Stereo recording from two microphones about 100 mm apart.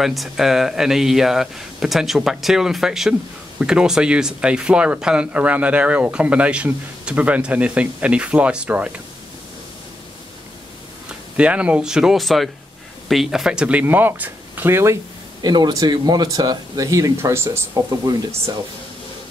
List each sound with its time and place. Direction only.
0.0 s speech: centre (ahead or behind)
11.3 s speech: 10° right (ahead or behind)
15.4 s speech: 45° right (ahead or behind); by 18.1 s 25° right (ahead or behind)